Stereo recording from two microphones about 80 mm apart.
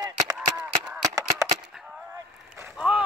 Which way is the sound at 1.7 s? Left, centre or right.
Centre.